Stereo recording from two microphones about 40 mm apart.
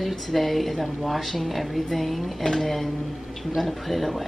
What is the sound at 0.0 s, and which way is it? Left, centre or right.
A woman's voice, centre.